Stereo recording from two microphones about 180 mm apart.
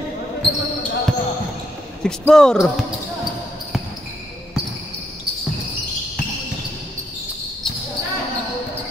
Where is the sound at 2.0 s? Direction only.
5° left (ahead or behind).